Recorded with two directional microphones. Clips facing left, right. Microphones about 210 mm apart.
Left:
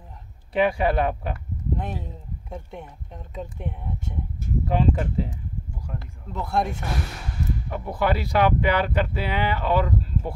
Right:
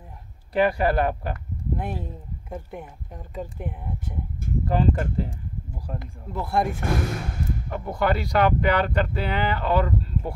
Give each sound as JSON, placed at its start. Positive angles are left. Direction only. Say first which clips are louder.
{"t": 0.5, "sound": "speech", "louder": "even", "side_deg": 0}
{"t": 6.8, "sound": "speech", "louder": "right 5 dB", "side_deg": -50}
{"t": 7.7, "sound": "speech", "louder": "even", "side_deg": 5}